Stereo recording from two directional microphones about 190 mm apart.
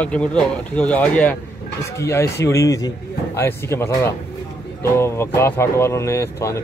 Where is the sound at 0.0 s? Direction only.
5° left (ahead or behind).